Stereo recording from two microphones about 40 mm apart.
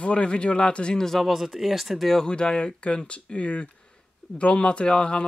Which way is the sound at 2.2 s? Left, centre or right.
Left.